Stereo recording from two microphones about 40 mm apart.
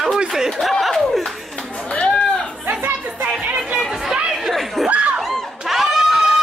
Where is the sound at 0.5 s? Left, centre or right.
Centre.